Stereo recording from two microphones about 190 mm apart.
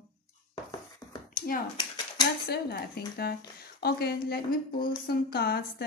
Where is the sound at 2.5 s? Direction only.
55° left (ahead or behind).